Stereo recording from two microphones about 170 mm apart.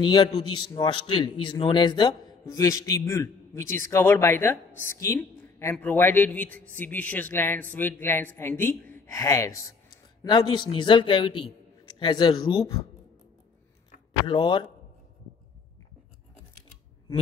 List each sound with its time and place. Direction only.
0.0 s a man's voice: 25° left (ahead or behind)
14.2 s a man's voice: 30° left (ahead or behind)